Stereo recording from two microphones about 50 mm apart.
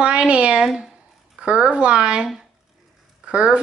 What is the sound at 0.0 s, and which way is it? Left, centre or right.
Speech, right.